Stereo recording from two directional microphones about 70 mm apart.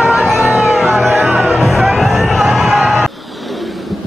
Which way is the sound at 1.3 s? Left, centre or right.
Right.